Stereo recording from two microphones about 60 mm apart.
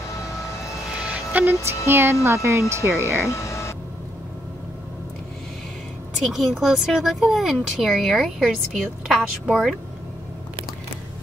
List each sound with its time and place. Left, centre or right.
0.9 s music: right
1.9 s speech: right
2.2 s speech: right
2.8 s speech: right
3.3 s a sound: left
6.1 s a woman's voice: centre